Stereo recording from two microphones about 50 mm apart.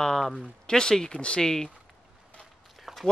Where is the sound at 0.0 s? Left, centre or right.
Centre.